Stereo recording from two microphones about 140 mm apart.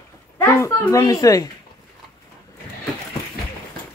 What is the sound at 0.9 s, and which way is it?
Speech, 25° left (ahead or behind).